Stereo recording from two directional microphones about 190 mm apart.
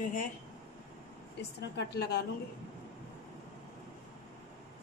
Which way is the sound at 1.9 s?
55° left (ahead or behind).